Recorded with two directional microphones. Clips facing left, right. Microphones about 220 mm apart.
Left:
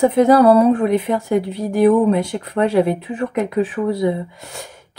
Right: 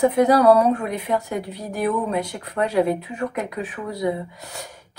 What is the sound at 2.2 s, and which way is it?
Speech, 25° left (ahead or behind).